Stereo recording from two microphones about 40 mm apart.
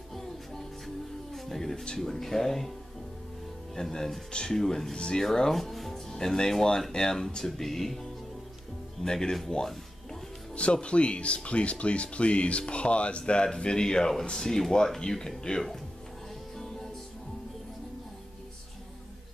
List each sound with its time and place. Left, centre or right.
0.1 s music: centre
2.0 s speech: centre
3.7 s speech: centre
4.6 s speech: centre
4.9 s speech: left
5.2 s speech: centre
6.1 s speech: centre
10.5 s speech: left